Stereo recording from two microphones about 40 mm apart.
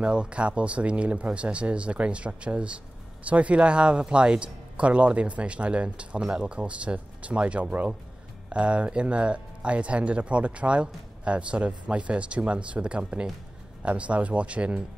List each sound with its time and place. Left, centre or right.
0.0 s speech: right